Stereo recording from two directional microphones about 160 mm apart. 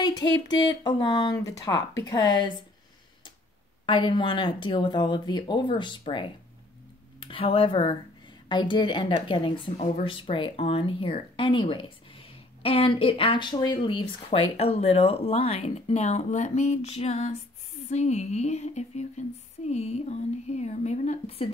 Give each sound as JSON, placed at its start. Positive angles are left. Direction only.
{"t": 0.8, "sound": "speech", "side_deg": 25}
{"t": 3.8, "sound": "speech", "side_deg": 30}